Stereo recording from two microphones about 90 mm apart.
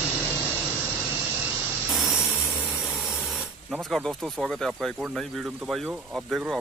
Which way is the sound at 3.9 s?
5° left (ahead or behind).